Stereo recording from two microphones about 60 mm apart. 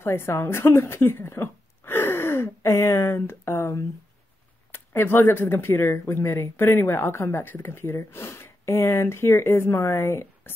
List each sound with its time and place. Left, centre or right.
0.0 s a woman's voice: left
4.7 s speech: left